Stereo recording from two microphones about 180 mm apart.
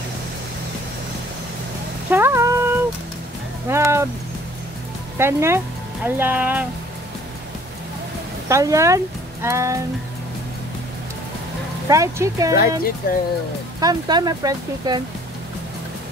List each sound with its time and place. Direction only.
2.0 s cat: 15° right (ahead or behind)
3.6 s a sound: 15° right (ahead or behind)
5.1 s speech: 15° right (ahead or behind)
8.5 s speech: 15° right (ahead or behind)
11.9 s speech: 20° right (ahead or behind)
13.0 s speech: 55° left (ahead or behind)
13.7 s speech: 20° right (ahead or behind)